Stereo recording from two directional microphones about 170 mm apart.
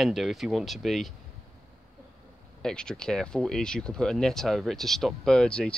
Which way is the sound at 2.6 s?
5° left (ahead or behind).